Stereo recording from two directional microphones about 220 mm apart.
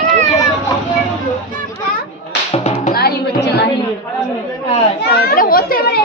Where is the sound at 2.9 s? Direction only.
45° left (ahead or behind).